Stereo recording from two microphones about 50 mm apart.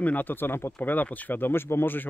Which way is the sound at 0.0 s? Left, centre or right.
Left.